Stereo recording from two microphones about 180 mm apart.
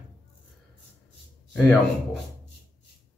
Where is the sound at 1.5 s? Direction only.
5° left (ahead or behind).